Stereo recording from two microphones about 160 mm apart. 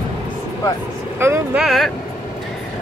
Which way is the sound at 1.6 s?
Centre (ahead or behind).